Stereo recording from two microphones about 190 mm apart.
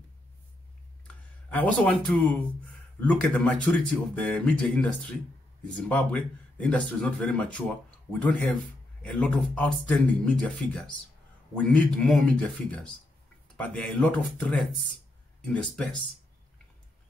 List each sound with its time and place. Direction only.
1.0 s speech: 5° left (ahead or behind)